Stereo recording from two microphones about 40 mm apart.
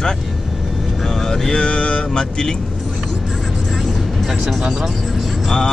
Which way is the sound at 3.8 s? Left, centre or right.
Centre.